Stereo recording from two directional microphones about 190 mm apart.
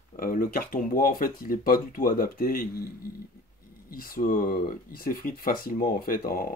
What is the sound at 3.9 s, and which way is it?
Speech, 50° left (ahead or behind).